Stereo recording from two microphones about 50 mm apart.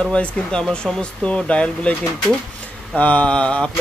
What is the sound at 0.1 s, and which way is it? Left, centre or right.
Speech, left.